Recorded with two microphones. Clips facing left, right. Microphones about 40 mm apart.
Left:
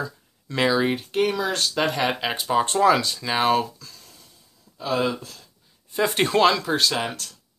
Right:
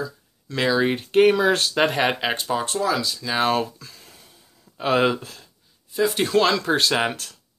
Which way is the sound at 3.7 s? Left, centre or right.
Centre.